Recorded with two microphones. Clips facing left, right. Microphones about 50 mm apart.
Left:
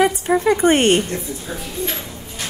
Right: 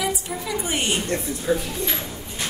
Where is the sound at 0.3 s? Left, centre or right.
Left.